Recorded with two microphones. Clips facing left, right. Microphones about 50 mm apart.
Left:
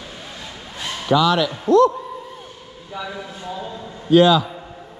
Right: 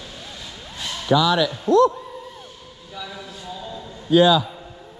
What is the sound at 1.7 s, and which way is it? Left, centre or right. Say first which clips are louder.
Speech: left 2 dB; left.